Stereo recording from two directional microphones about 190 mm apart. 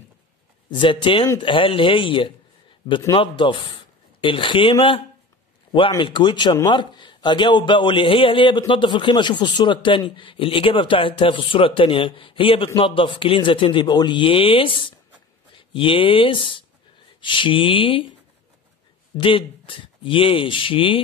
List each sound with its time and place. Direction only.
0.7 s speech: 25° left (ahead or behind)
19.2 s speech: 25° left (ahead or behind)